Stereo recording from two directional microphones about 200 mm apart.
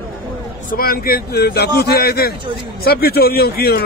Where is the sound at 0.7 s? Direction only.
45° left (ahead or behind).